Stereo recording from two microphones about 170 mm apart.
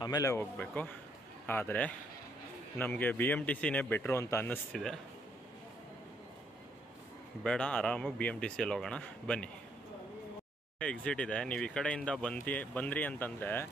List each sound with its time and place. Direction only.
0.0 s speech: 20° left (ahead or behind)
4.7 s speech: centre (ahead or behind)
7.4 s speech: 5° left (ahead or behind)
10.8 s speech: 5° left (ahead or behind)